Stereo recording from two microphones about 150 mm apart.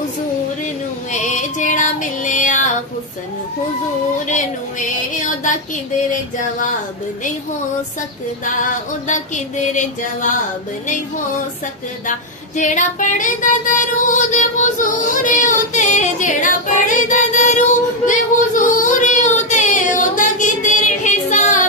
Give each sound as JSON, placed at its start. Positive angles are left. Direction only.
{"t": 1.1, "sound": "female singing", "side_deg": 55}
{"t": 4.3, "sound": "music", "side_deg": 60}
{"t": 8.5, "sound": "music", "side_deg": 60}
{"t": 12.5, "sound": "female singing", "side_deg": 55}